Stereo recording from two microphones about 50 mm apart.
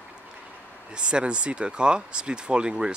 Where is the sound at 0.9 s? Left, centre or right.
Right.